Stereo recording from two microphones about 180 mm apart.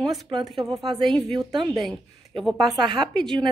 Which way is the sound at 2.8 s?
25° right (ahead or behind).